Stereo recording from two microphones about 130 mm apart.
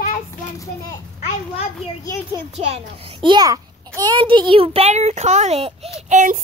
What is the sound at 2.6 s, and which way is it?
A child's voice, 50° right (ahead or behind).